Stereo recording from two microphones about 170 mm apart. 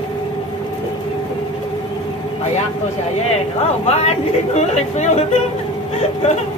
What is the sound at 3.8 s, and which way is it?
A woman's voice, 40° left (ahead or behind).